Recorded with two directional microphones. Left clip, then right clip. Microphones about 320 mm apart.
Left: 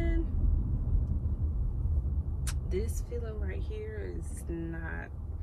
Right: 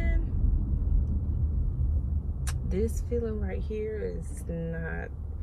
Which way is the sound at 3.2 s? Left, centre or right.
Centre.